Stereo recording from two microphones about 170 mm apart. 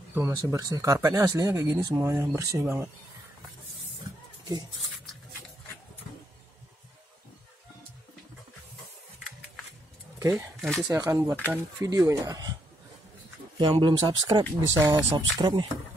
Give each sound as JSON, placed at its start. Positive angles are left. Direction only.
{"t": 0.1, "sound": "speech", "side_deg": -15}
{"t": 10.1, "sound": "a sound", "side_deg": -15}
{"t": 10.6, "sound": "speech", "side_deg": 0}
{"t": 10.9, "sound": "speech", "side_deg": -20}
{"t": 13.6, "sound": "speech", "side_deg": -25}
{"t": 14.8, "sound": "speech", "side_deg": -15}